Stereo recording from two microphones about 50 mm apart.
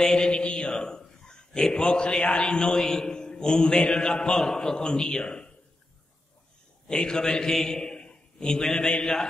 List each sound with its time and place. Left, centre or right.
0.0 s a man's voice: centre
6.9 s a man's voice: centre